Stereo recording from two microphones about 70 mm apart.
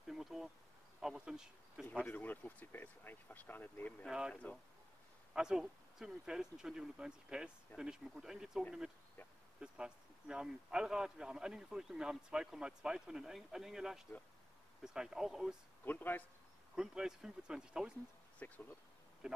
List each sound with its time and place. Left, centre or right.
0.0 s insect: centre
1.0 s speech: centre
2.1 s speech: left
5.3 s a man's voice: centre
15.8 s speech: left
16.7 s a man's voice: centre
18.4 s speech: left
19.2 s a man's voice: centre